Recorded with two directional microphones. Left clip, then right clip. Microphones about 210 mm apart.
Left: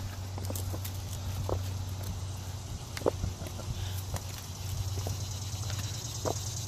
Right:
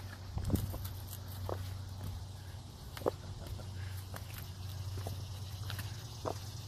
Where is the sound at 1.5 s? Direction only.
25° right (ahead or behind).